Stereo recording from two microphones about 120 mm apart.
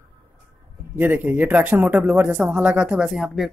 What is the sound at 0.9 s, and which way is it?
Speech, 15° right (ahead or behind).